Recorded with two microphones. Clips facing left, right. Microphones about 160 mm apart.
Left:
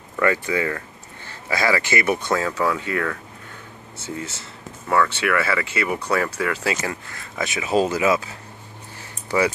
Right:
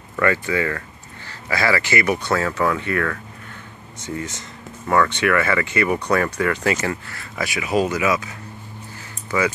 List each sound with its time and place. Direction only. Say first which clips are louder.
0.1 s speech: right 1 dB; 15° left (ahead or behind); by 8.3 s 30° left (ahead or behind)